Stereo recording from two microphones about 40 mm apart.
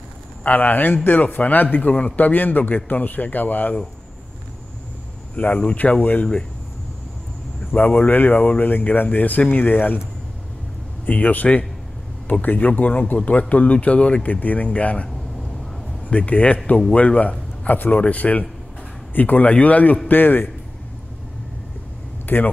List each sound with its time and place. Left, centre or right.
0.4 s a man's voice: left
5.3 s speech: left
7.7 s a man's voice: left
11.1 s speech: left
14.2 s speech: left
16.1 s speech: left
17.6 s a man's voice: left
20.1 s a man's voice: left
22.2 s a sound: left